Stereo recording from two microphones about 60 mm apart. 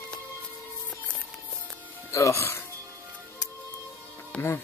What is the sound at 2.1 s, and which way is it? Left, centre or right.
Speech, left.